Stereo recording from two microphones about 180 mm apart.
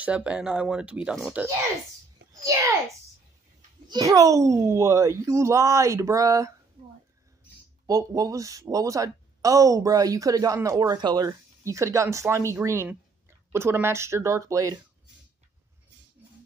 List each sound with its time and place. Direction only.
0.0 s speech: 5° right (ahead or behind)
3.9 s speech: 20° right (ahead or behind)
6.8 s a sound: 40° right (ahead or behind)
7.8 s speech: 20° right (ahead or behind)